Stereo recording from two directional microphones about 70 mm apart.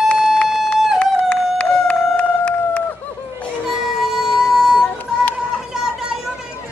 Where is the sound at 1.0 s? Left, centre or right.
Centre.